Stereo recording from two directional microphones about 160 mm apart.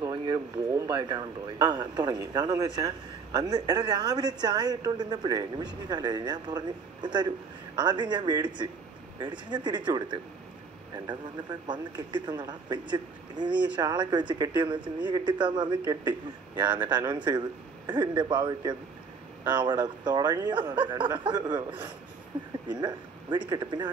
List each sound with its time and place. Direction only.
0.0 s speech: 25° right (ahead or behind)
11.6 s speech: 30° right (ahead or behind)
21.6 s speech: 10° right (ahead or behind)
22.7 s speech: 25° right (ahead or behind)